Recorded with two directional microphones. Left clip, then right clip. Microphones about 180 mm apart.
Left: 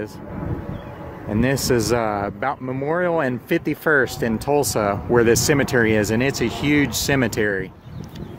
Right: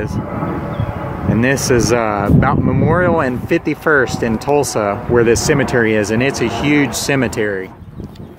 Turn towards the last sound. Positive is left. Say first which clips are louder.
# right 3 dB
turn(degrees=60)  # may be behind; listen again after turning